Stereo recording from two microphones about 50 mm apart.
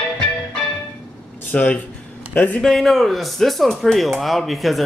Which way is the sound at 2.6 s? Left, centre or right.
Centre.